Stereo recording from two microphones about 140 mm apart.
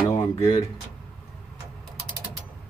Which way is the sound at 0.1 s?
25° left (ahead or behind).